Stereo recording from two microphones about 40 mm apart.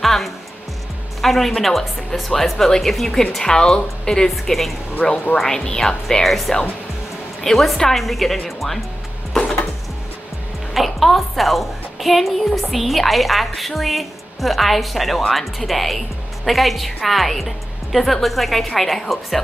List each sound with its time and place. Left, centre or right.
0.0 s music: centre
1.2 s a woman's voice: centre
4.3 s a woman's voice: centre
5.0 s a woman's voice: centre
6.2 s a woman's voice: centre
10.7 s a woman's voice: centre